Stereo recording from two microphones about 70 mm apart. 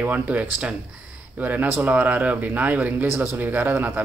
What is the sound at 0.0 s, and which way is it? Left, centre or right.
Speech, right.